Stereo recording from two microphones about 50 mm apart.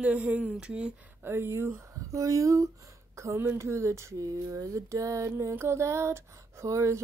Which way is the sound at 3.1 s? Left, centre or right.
Right.